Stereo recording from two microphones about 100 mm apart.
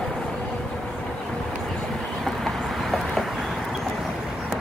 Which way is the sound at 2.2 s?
Centre (ahead or behind).